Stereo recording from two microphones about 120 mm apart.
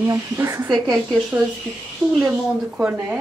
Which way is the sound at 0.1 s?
25° right (ahead or behind).